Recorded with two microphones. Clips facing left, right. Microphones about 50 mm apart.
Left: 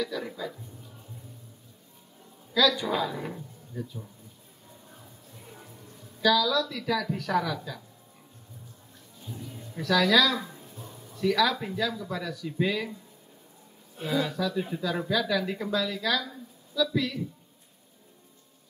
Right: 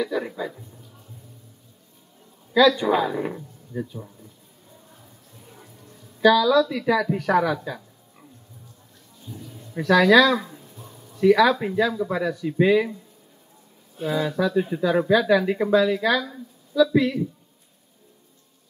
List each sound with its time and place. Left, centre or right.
0.0 s speech: right
2.6 s speech: centre
6.2 s speech: right
9.2 s a sound: centre
9.8 s speech: right
14.3 s speech: centre